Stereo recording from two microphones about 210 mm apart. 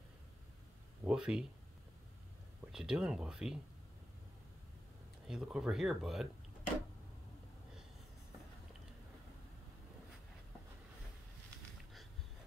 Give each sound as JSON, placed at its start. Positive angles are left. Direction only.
{"t": 1.0, "sound": "speech", "side_deg": -5}
{"t": 2.6, "sound": "speech", "side_deg": -5}
{"t": 5.3, "sound": "speech", "side_deg": -5}